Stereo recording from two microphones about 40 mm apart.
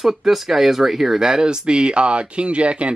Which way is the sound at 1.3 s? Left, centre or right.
Centre.